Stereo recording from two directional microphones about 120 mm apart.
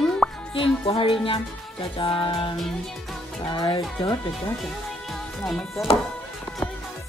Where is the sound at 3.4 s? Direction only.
40° left (ahead or behind).